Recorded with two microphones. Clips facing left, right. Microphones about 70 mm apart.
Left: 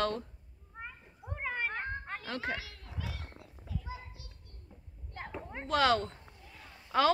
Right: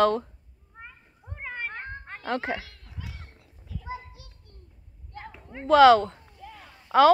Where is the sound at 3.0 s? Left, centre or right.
Centre.